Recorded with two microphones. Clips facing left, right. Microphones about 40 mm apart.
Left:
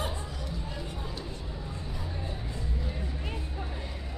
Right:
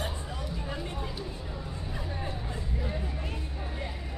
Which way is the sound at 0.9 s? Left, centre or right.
Centre.